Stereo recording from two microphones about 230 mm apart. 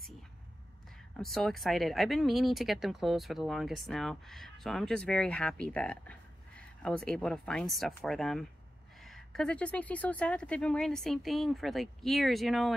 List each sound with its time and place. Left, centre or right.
1.1 s speech: centre